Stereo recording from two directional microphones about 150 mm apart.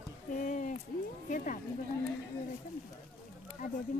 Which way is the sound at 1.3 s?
60° left (ahead or behind).